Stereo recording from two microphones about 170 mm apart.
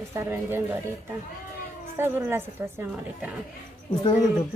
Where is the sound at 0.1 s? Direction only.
15° right (ahead or behind).